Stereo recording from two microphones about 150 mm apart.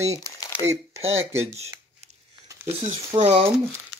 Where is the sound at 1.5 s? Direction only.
45° right (ahead or behind).